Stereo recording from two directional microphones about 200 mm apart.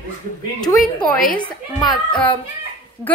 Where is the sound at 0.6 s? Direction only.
20° left (ahead or behind).